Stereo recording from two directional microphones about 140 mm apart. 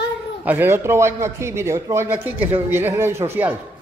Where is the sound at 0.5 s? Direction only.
15° right (ahead or behind).